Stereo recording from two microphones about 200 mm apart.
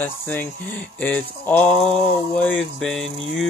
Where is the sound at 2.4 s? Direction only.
5° left (ahead or behind).